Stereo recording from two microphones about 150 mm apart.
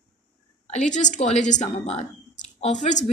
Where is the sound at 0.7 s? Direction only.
55° left (ahead or behind).